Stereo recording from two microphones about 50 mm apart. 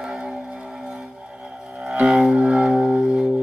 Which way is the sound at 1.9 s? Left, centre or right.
Centre.